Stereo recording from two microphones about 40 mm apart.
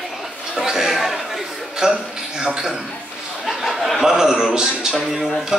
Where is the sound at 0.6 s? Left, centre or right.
Centre.